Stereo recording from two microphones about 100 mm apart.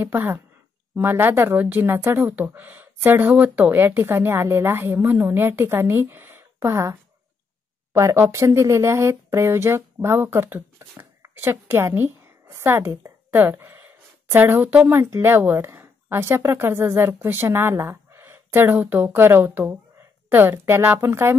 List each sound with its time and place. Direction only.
0.0 s speech: 20° right (ahead or behind)